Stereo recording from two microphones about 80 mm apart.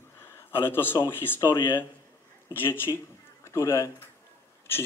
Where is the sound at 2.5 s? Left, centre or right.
Left.